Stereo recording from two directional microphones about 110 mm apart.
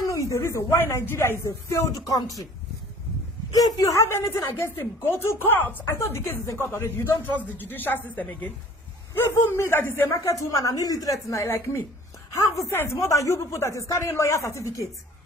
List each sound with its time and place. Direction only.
0.0 s speech: 30° left (ahead or behind)
3.5 s speech: 35° left (ahead or behind)